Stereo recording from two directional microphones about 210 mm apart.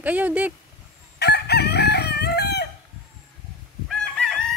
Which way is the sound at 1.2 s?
50° left (ahead or behind).